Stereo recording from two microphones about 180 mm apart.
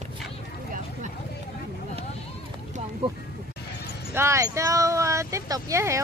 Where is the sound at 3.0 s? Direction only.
30° right (ahead or behind).